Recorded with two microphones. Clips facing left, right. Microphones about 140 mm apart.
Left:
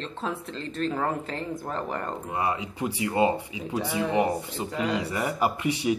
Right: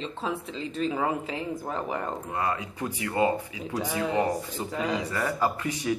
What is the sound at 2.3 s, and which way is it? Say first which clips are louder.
Speech: left 3 dB; 15° left (ahead or behind).